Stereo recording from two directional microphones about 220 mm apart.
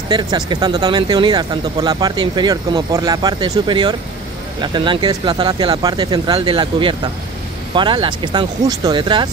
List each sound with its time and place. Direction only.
0.1 s speech: 20° right (ahead or behind)